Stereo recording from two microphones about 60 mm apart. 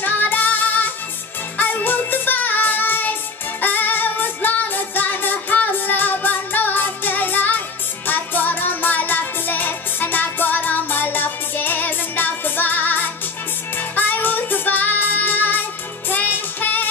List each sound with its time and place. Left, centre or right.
0.0 s music: left